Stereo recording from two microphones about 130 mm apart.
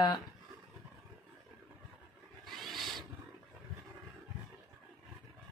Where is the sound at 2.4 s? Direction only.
Centre (ahead or behind).